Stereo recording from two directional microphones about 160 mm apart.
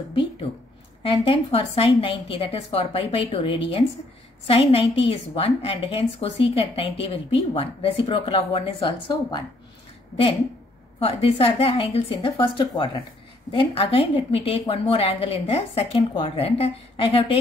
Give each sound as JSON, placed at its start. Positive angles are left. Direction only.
{"t": 1.0, "sound": "a woman's voice", "side_deg": 35}
{"t": 11.0, "sound": "a woman's voice", "side_deg": 40}